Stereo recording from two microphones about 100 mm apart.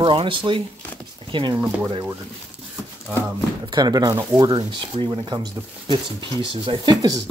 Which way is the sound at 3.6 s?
45° right (ahead or behind).